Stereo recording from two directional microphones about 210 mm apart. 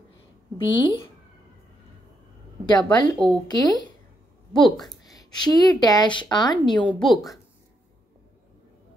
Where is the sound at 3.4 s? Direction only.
20° left (ahead or behind).